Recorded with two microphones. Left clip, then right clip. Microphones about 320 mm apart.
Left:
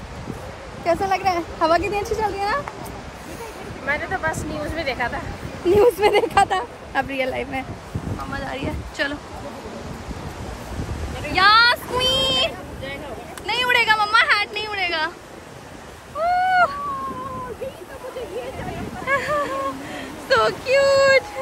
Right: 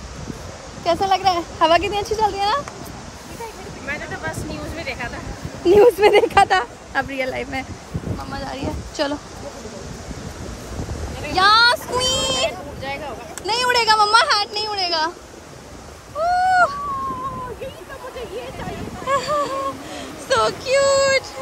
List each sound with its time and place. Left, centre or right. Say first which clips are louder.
0.8 s speech: right 2 dB; centre
3.9 s speech: left 5 dB; centre
5.7 s speech: right 4 dB; right
6.9 s speech: left 3 dB; centre
11.2 s a sound: even; centre
13.5 s speech: right 1 dB; centre
16.2 s cat: right 2 dB; centre
19.0 s a sound: right 1 dB; centre
20.0 s speech: even; centre